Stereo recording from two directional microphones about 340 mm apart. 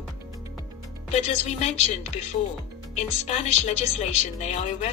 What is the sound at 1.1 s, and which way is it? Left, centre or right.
A woman's voice, centre.